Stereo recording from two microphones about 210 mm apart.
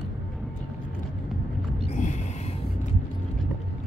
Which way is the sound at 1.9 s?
35° left (ahead or behind).